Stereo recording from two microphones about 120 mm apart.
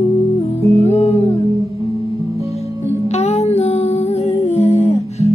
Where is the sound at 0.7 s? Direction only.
65° left (ahead or behind).